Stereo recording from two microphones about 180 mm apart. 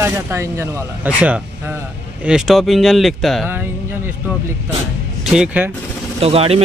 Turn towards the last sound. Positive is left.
turn(degrees=-35)  # may be behind; listen again after turning